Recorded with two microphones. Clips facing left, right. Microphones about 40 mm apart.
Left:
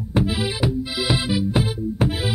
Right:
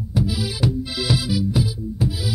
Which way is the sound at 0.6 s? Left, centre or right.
Left.